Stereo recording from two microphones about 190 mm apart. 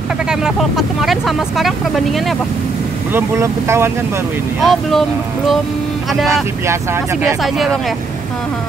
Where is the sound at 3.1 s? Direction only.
10° right (ahead or behind).